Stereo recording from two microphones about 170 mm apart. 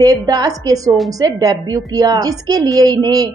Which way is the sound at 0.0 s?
20° right (ahead or behind).